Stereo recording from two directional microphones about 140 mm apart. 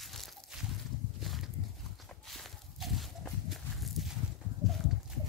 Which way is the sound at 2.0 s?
Centre (ahead or behind).